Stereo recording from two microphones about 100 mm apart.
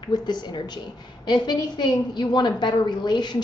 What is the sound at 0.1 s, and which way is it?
A woman's voice, 45° left (ahead or behind).